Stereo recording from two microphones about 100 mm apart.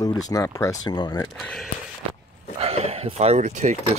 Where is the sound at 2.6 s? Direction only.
90° right.